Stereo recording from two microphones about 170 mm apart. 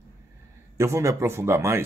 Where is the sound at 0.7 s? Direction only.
15° right (ahead or behind).